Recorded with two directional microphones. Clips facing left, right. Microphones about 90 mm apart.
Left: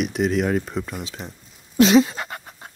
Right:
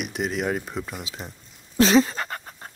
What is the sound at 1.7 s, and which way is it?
Speech, 35° right (ahead or behind).